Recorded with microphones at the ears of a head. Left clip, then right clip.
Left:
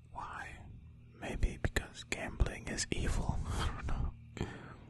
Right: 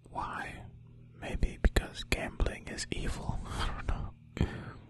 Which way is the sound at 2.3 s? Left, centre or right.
Centre.